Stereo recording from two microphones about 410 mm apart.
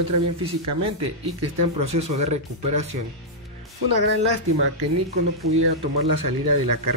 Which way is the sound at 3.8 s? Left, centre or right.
Right.